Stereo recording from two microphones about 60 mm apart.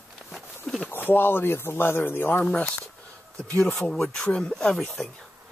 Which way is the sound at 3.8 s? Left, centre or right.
Centre.